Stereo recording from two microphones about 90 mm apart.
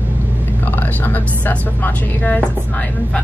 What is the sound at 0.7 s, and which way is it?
A woman's voice, 20° left (ahead or behind).